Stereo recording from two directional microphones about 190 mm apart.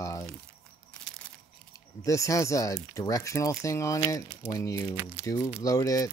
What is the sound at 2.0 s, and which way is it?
Speech, 15° left (ahead or behind).